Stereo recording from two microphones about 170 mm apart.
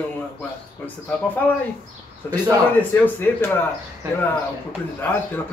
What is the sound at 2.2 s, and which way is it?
Speech, 15° left (ahead or behind).